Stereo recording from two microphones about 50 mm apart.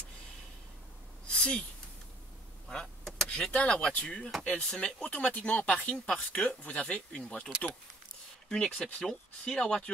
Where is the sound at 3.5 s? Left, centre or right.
Left.